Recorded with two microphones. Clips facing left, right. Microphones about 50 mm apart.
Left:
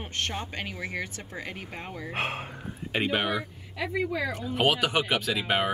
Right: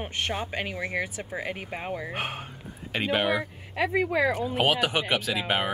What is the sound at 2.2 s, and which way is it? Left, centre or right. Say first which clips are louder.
Speech: left 2 dB; left.